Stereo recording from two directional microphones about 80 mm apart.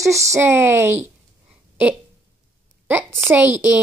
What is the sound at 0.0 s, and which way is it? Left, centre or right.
Speech, right.